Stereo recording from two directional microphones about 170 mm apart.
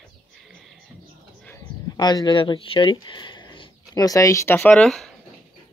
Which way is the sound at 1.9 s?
25° left (ahead or behind).